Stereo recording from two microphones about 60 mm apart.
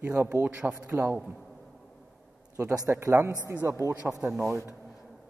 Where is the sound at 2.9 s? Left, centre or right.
Right.